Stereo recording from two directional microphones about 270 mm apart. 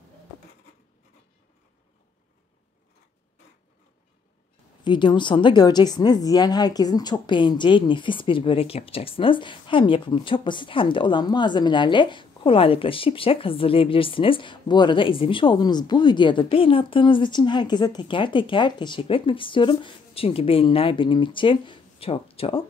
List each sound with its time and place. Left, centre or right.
4.8 s a woman's voice: centre